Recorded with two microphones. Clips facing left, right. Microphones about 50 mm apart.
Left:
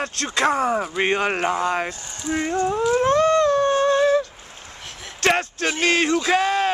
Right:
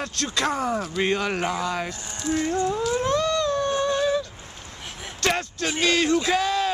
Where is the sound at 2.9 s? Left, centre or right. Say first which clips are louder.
Left 9 dB; left.